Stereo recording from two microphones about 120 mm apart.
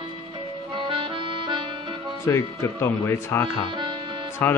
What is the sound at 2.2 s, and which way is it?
Speech, 25° left (ahead or behind).